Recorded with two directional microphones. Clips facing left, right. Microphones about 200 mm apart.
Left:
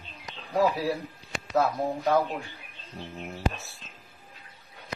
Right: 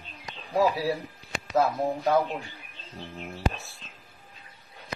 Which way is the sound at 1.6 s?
Centre (ahead or behind).